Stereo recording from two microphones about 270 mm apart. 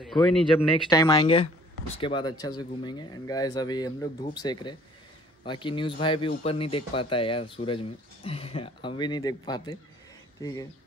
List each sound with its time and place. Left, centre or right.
0.0 s speech: centre
0.8 s speech: centre